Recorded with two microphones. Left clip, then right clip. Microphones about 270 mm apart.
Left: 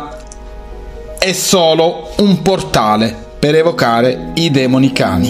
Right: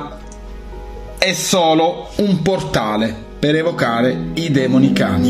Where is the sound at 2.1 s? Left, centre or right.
Left.